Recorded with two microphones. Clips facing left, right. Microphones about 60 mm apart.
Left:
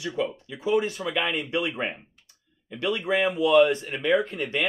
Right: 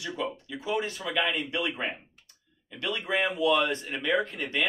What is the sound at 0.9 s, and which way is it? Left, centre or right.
Speech, centre.